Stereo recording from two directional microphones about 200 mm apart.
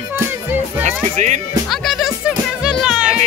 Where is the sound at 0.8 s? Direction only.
35° right (ahead or behind).